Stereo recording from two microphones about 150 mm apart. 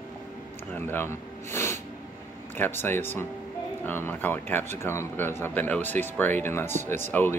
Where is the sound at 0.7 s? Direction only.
15° left (ahead or behind).